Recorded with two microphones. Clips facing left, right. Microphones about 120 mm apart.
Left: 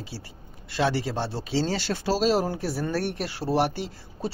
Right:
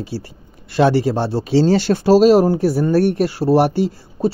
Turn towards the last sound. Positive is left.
turn(degrees=-45)  # may be behind; listen again after turning